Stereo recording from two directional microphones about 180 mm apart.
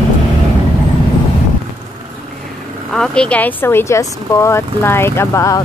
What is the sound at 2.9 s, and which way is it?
Speech, 5° left (ahead or behind).